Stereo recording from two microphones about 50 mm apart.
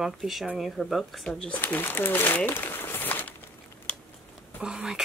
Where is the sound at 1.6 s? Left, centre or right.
Left.